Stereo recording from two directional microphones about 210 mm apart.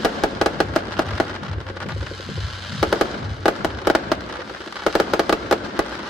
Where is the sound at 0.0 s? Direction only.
Centre (ahead or behind).